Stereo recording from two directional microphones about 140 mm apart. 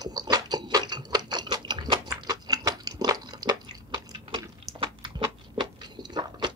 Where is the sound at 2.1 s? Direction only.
30° right (ahead or behind).